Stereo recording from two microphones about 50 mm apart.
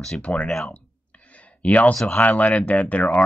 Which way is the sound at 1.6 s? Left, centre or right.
Left.